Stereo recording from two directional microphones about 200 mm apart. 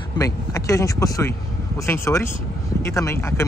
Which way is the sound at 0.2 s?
15° left (ahead or behind).